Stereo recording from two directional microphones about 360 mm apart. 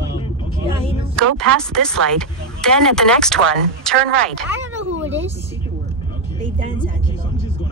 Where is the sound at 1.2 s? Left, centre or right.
Centre.